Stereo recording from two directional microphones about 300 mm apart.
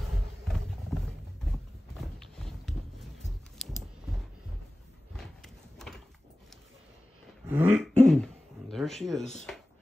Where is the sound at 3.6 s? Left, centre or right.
Centre.